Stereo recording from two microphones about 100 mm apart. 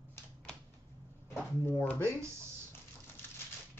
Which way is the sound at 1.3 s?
20° left (ahead or behind).